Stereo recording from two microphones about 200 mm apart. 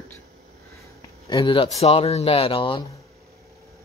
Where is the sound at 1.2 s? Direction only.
25° left (ahead or behind).